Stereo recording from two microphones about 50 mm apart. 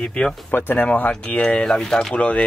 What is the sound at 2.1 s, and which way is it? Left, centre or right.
Speech, left.